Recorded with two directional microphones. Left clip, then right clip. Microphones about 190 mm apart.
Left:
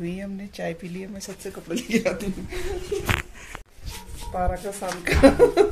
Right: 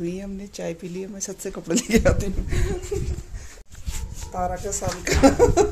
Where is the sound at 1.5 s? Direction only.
55° right (ahead or behind).